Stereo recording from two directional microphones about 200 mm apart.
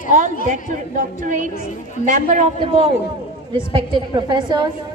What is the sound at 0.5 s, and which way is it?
A woman's voice, 40° right (ahead or behind).